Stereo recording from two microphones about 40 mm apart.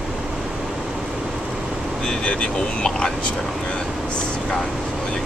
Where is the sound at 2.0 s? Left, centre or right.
Left.